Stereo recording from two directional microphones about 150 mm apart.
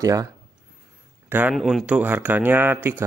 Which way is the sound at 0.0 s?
20° right (ahead or behind).